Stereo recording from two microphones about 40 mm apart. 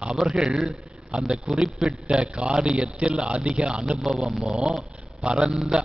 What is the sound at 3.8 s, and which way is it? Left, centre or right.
Speech, centre.